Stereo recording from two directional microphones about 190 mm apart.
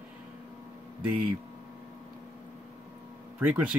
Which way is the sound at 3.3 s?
10° right (ahead or behind).